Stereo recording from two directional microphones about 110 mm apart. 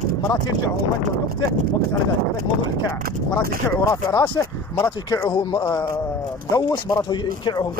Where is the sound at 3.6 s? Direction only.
35° left (ahead or behind).